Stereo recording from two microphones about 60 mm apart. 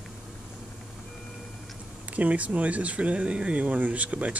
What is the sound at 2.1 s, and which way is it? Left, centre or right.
Speech, right.